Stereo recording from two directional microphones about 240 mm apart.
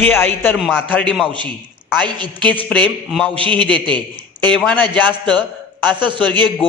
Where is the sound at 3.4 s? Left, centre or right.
Right.